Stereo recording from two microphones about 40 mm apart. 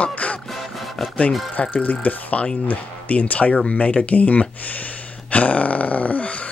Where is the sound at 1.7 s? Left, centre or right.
Left.